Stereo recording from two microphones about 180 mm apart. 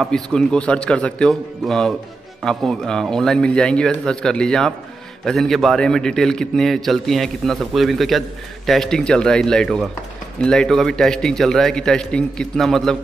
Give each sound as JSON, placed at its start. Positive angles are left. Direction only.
{"t": 0.0, "sound": "a man's voice", "side_deg": 5}